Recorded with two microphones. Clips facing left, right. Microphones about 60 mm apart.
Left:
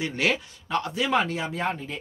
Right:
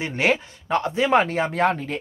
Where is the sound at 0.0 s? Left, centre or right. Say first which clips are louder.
Right 4 dB; right.